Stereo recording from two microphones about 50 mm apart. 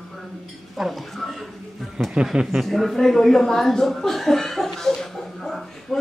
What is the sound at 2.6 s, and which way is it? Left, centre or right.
Speech, centre.